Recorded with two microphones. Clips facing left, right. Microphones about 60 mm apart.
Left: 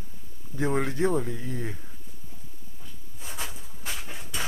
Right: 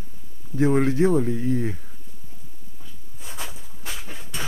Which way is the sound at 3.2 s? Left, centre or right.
Centre.